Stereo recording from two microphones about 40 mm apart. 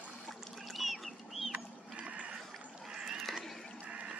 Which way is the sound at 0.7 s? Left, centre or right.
Centre.